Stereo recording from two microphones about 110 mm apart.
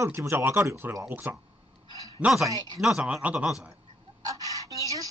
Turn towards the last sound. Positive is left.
turn(degrees=-30)  # may be behind; listen again after turning